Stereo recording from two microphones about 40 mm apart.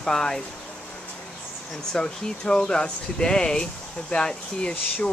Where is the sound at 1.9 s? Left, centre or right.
Centre.